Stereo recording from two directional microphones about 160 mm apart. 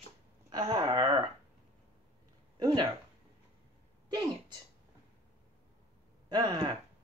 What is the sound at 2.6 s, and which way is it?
Speech, 25° right (ahead or behind).